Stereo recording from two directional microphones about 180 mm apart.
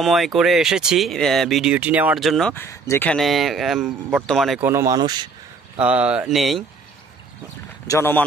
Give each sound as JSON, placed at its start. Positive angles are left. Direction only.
{"t": 0.0, "sound": "speech", "side_deg": 0}
{"t": 2.5, "sound": "speech", "side_deg": 15}
{"t": 4.6, "sound": "speech", "side_deg": -15}
{"t": 5.8, "sound": "speech", "side_deg": -5}
{"t": 7.8, "sound": "speech", "side_deg": 15}